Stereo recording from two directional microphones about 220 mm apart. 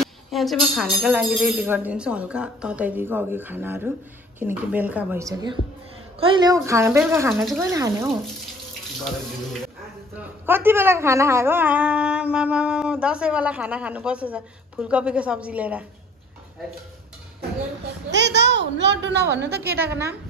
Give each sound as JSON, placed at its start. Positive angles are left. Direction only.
{"t": 0.0, "sound": "speech", "side_deg": 0}
{"t": 10.1, "sound": "a woman's voice", "side_deg": -10}
{"t": 18.1, "sound": "a woman's voice", "side_deg": -50}